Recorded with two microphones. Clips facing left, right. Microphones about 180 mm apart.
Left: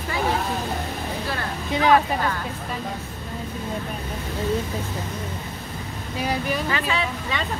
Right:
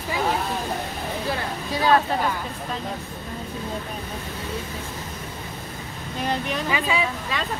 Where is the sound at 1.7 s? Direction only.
20° left (ahead or behind).